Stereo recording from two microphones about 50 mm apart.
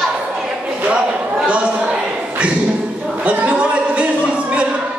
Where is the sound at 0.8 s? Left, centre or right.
Centre.